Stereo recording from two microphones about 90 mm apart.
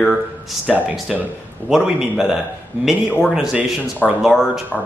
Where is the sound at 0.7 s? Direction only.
5° right (ahead or behind).